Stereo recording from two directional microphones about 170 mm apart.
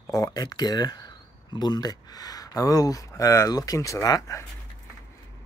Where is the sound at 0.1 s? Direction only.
20° left (ahead or behind).